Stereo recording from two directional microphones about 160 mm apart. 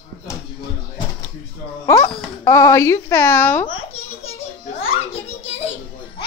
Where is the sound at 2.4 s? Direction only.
20° left (ahead or behind).